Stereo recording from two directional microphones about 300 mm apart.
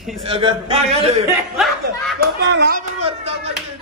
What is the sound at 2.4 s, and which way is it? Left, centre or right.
Speech, right.